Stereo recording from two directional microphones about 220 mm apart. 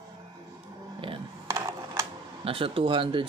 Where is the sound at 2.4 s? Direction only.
25° right (ahead or behind).